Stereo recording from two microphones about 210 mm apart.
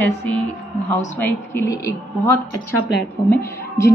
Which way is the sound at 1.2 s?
10° left (ahead or behind).